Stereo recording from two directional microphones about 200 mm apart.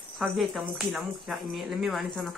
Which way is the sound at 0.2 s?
5° right (ahead or behind).